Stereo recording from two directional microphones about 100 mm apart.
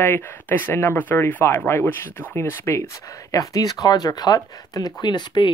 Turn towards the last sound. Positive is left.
turn(degrees=50)  # may be behind; listen again after turning